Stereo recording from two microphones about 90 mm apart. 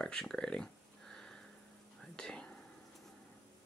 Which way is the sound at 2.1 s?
5° left (ahead or behind).